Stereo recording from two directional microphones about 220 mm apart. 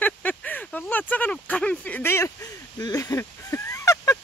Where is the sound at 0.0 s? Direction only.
5° left (ahead or behind).